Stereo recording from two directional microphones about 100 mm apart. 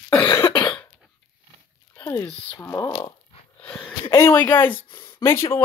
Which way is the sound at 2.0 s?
25° left (ahead or behind).